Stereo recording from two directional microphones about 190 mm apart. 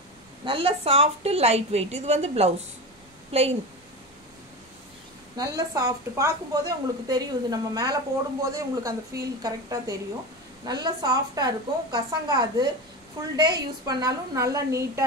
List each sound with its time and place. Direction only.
0.5 s a woman's voice: 30° right (ahead or behind)
5.4 s a woman's voice: 20° right (ahead or behind)